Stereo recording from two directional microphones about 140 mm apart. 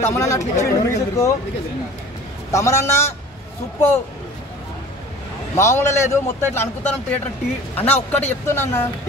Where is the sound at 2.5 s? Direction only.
20° left (ahead or behind).